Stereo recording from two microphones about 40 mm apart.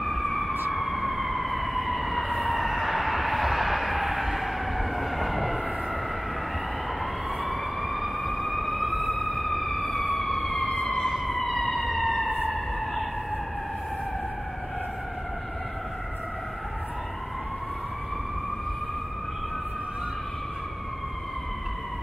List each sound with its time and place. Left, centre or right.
0.0 s emergency vehicle: centre
0.7 s fire engine: centre
7.0 s vehicle: centre
9.3 s music: centre
10.1 s emergency vehicle: centre